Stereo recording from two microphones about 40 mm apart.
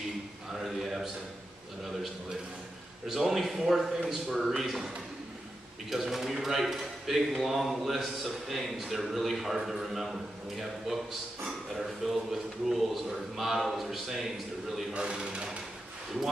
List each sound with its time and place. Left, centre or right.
0.6 s speech: centre
3.1 s speech: centre
15.0 s speech: right